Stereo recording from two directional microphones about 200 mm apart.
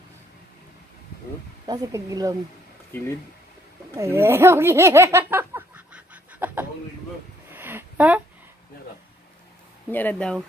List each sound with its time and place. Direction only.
1.7 s speech: 15° right (ahead or behind)
3.9 s a sound: 15° right (ahead or behind)
9.8 s speech: 10° left (ahead or behind)